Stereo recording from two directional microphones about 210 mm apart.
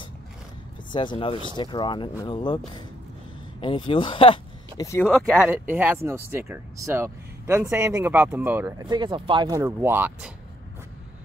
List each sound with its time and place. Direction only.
0.9 s speech: 25° left (ahead or behind)
5.0 s speech: 5° right (ahead or behind)